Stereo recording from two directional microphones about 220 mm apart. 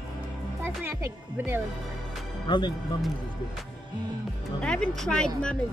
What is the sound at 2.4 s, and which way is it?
Speech, 20° left (ahead or behind).